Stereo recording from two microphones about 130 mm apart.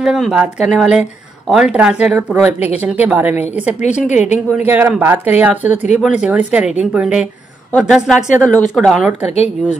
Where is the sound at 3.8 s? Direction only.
65° left (ahead or behind).